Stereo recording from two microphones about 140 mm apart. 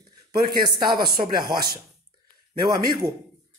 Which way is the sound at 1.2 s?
30° right (ahead or behind).